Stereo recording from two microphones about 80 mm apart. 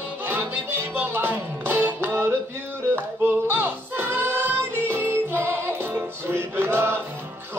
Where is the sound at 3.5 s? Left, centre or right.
Right.